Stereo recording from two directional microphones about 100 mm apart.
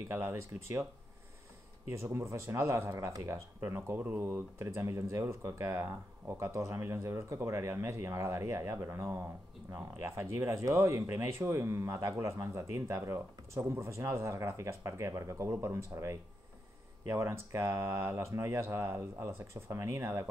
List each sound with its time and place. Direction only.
0.1 s speech: 30° right (ahead or behind)
2.0 s speech: 30° right (ahead or behind)